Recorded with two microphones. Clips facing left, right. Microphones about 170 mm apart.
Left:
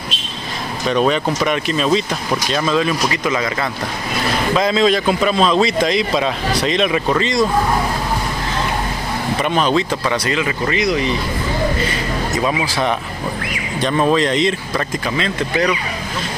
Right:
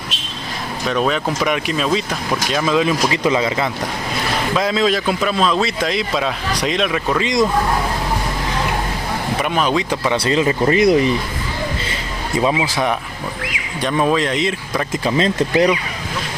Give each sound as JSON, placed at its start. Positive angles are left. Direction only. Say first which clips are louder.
{"t": 0.8, "sound": "a man's voice", "louder": "left 3 dB", "side_deg": 0}
{"t": 3.1, "sound": "a man's voice", "louder": "right 3 dB", "side_deg": -25}
{"t": 4.6, "sound": "a man's voice", "louder": "left 2 dB", "side_deg": -5}
{"t": 6.5, "sound": "speech", "louder": "left 2 dB", "side_deg": -15}
{"t": 6.8, "sound": "a man's voice", "louder": "left 3 dB", "side_deg": 5}
{"t": 7.2, "sound": "speech", "louder": "right 3 dB", "side_deg": -15}
{"t": 9.4, "sound": "speech", "louder": "left 2 dB", "side_deg": -10}
{"t": 10.1, "sound": "speech", "louder": "right 3 dB", "side_deg": -30}
{"t": 10.8, "sound": "speech", "louder": "right 5 dB", "side_deg": -50}
{"t": 12.3, "sound": "speech", "louder": "right 3 dB", "side_deg": -20}
{"t": 13.7, "sound": "speech", "louder": "left 1 dB", "side_deg": -5}
{"t": 15.0, "sound": "speech", "louder": "right 4 dB", "side_deg": -35}